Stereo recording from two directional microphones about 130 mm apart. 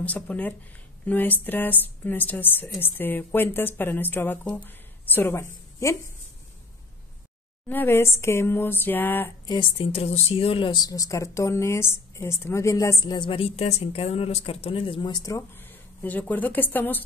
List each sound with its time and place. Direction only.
0.0 s a woman's voice: 10° left (ahead or behind)
7.6 s a woman's voice: 15° left (ahead or behind)
9.5 s a woman's voice: 40° left (ahead or behind); by 13.0 s 20° left (ahead or behind)
13.0 s a woman's voice: 35° left (ahead or behind); by 17.0 s 15° left (ahead or behind)